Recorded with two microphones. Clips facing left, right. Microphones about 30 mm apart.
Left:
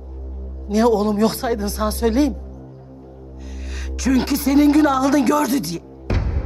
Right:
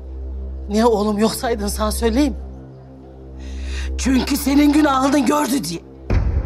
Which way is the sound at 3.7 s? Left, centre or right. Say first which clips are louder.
Even; centre.